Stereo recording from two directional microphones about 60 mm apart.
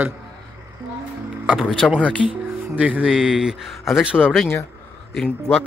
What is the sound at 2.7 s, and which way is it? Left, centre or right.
Speech, right.